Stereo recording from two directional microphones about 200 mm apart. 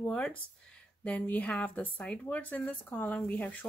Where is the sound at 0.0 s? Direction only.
5° left (ahead or behind).